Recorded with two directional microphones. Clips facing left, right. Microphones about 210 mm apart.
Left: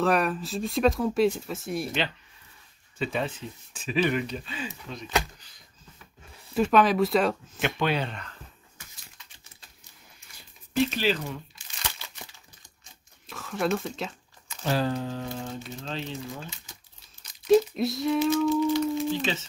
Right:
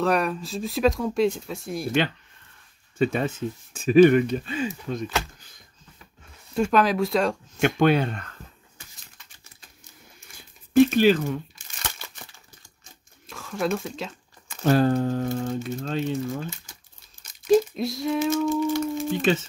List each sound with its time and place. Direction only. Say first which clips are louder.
0.0 s speech: right 1 dB; centre (ahead or behind)
3.0 s speech: right 6 dB; 50° right (ahead or behind)
6.5 s speech: even; centre (ahead or behind)
7.6 s speech: right 7 dB; 50° right (ahead or behind)
10.7 s crumpling: right 9 dB; 50° right (ahead or behind)
13.3 s speech: right 1 dB; centre (ahead or behind)
14.5 s speech: right 7 dB; 50° right (ahead or behind)
17.5 s a sound: right 1 dB; centre (ahead or behind)
18.5 s speech: even; 50° right (ahead or behind)